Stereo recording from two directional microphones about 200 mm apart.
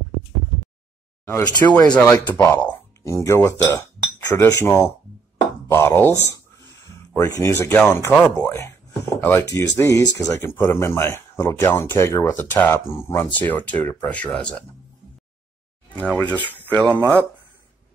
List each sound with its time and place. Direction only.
1.2 s speech: 10° left (ahead or behind)
2.1 s speech: 20° left (ahead or behind)
2.4 s speech: 10° left (ahead or behind)
7.2 s speech: 15° left (ahead or behind)
16.0 s speech: 5° left (ahead or behind)
16.9 s speech: 10° right (ahead or behind)